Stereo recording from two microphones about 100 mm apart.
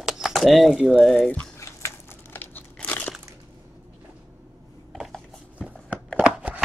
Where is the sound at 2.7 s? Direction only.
15° left (ahead or behind).